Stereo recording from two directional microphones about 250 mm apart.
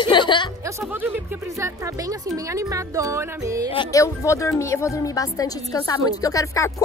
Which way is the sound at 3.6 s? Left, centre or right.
Centre.